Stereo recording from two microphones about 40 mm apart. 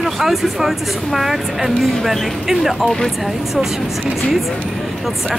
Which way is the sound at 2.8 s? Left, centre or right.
Centre.